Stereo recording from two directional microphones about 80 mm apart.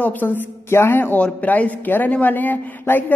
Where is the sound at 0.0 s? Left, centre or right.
Left.